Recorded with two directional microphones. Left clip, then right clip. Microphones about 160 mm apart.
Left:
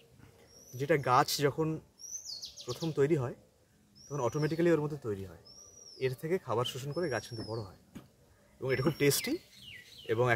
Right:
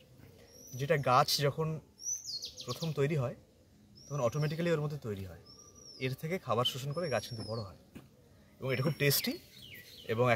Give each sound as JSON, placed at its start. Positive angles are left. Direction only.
{"t": 0.7, "sound": "speech", "side_deg": 30}
{"t": 8.5, "sound": "speech", "side_deg": 20}